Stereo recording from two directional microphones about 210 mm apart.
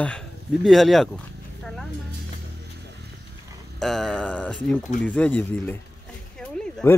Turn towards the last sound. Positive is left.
turn(degrees=5)  # may be behind; listen again after turning